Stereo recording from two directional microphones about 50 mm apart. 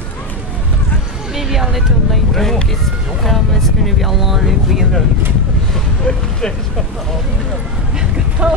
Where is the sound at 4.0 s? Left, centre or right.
Centre.